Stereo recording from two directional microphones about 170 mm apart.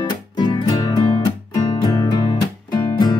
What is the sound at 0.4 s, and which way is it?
Music, 25° left (ahead or behind).